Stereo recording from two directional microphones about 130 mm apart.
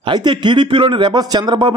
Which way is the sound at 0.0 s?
35° right (ahead or behind).